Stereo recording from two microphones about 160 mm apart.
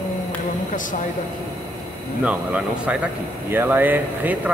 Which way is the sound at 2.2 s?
10° right (ahead or behind).